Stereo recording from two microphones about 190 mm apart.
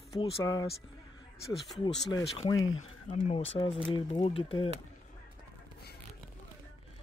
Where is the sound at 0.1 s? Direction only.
20° left (ahead or behind).